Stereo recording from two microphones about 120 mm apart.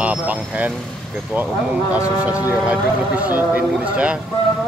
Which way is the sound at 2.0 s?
10° right (ahead or behind).